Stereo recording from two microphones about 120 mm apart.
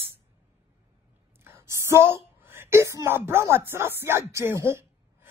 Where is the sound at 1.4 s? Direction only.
20° right (ahead or behind).